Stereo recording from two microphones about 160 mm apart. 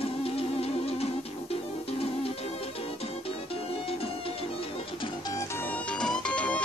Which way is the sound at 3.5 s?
35° left (ahead or behind).